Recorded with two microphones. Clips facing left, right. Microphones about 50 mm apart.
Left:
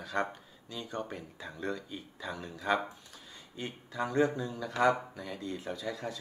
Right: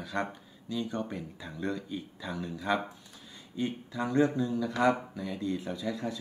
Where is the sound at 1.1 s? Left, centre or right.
Left.